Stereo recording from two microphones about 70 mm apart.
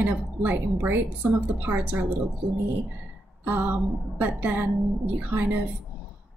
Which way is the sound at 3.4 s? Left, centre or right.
Right.